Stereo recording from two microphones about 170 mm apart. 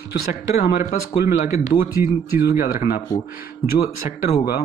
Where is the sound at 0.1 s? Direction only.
65° left (ahead or behind).